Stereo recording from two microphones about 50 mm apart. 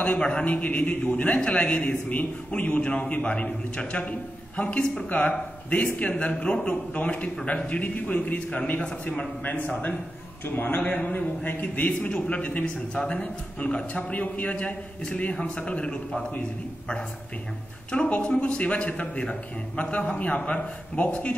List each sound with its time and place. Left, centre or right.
0.2 s a man's voice: left
9.4 s a man's voice: left
18.1 s a man's voice: left